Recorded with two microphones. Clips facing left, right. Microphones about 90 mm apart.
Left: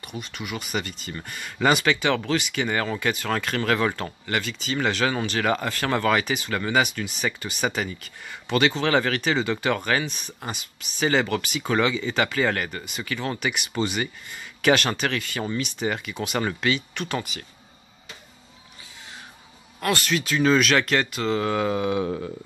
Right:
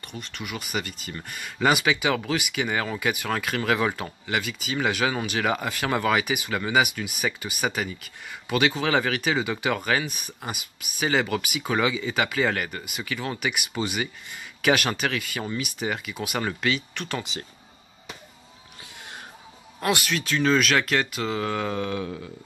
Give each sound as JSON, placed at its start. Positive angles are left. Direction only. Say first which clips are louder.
{"t": 0.0, "sound": "speech", "louder": "left 2 dB", "side_deg": 5}
{"t": 17.2, "sound": "speech", "louder": "even", "side_deg": -25}
{"t": 19.8, "sound": "speech", "louder": "even", "side_deg": -15}
{"t": 20.1, "sound": "speech", "louder": "left 4 dB", "side_deg": 5}